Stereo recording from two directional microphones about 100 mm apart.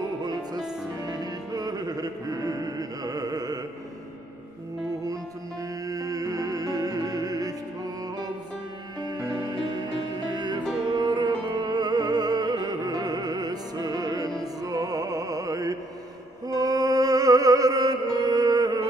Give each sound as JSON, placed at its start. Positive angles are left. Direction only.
{"t": 1.0, "sound": "music", "side_deg": -40}
{"t": 5.9, "sound": "music", "side_deg": -35}
{"t": 9.0, "sound": "music", "side_deg": -45}